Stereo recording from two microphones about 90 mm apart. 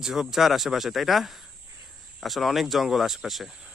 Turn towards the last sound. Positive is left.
turn(degrees=0)  # may be behind; listen again after turning